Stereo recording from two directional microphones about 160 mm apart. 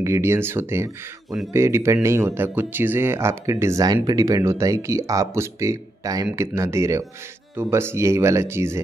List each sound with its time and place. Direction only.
0.0 s speech: 15° right (ahead or behind)